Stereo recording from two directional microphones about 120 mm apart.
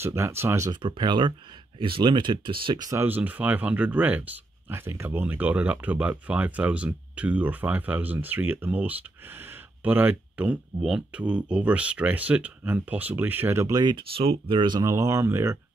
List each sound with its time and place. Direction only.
0.0 s speech: 20° right (ahead or behind)
0.7 s speech: 40° right (ahead or behind)
2.9 s speech: 15° right (ahead or behind)
13.8 s speech: 45° right (ahead or behind)
14.8 s speech: 25° right (ahead or behind)